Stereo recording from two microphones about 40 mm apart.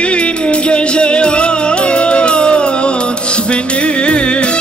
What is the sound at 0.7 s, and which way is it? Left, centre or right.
Music, left.